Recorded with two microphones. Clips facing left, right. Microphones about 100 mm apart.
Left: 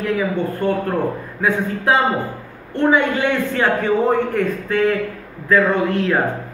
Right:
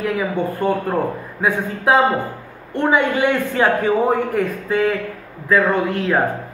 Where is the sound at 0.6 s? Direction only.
15° right (ahead or behind).